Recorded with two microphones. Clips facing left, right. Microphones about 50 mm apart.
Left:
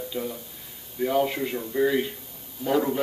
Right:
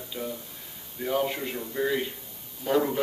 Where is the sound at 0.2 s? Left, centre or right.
Centre.